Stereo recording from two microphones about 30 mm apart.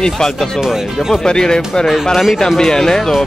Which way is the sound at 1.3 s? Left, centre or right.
Left.